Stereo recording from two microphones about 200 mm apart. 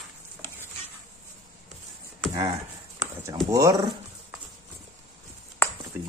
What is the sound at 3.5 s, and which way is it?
Speech, 15° right (ahead or behind).